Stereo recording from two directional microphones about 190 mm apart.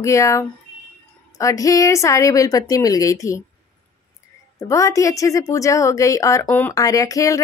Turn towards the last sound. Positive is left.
turn(degrees=15)  # may be behind; listen again after turning